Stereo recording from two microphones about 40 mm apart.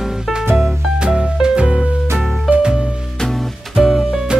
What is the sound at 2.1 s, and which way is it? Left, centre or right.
Music, centre.